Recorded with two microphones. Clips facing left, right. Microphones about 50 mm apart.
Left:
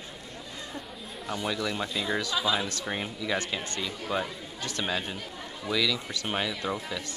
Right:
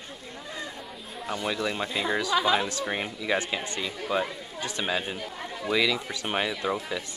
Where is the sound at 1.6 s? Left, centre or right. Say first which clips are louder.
Right 2 dB; right.